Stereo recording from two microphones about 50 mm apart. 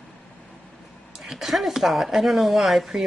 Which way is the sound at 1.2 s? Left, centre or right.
Centre.